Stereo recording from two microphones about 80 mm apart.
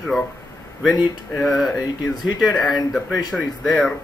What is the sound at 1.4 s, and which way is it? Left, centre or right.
Speech, centre.